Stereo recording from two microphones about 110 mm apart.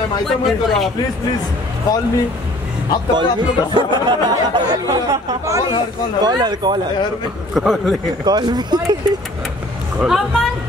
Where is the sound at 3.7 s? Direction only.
45° right (ahead or behind).